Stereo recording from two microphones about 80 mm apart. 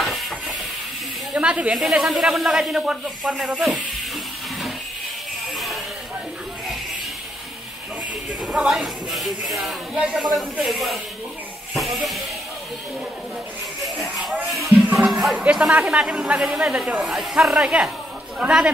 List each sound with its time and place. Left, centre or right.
0.0 s ratchet: centre
1.3 s speech: centre
8.5 s speech: centre
9.9 s speech: centre
10.3 s speech: centre
11.7 s music: centre
15.0 s music: centre
15.3 s speech: centre
17.0 s speech: centre